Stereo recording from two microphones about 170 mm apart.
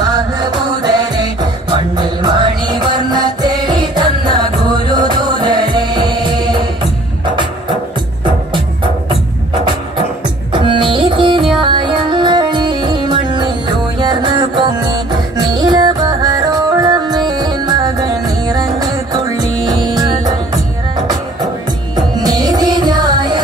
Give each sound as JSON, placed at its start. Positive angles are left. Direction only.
{"t": 0.1, "sound": "music", "side_deg": -25}
{"t": 10.5, "sound": "music", "side_deg": -30}
{"t": 21.9, "sound": "music", "side_deg": -25}